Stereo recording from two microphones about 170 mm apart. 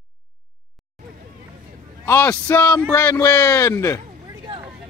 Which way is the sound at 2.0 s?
15° left (ahead or behind).